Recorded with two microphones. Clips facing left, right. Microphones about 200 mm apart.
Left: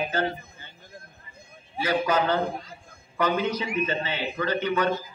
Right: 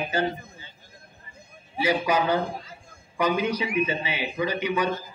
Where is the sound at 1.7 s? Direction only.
10° right (ahead or behind).